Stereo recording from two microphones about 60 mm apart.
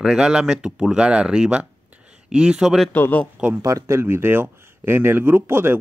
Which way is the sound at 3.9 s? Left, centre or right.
Right.